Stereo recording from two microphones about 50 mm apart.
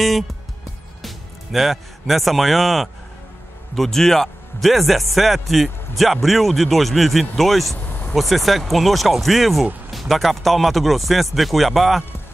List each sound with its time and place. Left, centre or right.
1.0 s speech: centre
7.8 s vehicle: left
8.1 s speech: centre